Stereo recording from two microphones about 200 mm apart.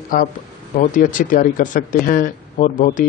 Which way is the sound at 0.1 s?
40° left (ahead or behind).